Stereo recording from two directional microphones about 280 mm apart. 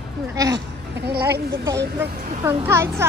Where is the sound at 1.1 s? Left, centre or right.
Right.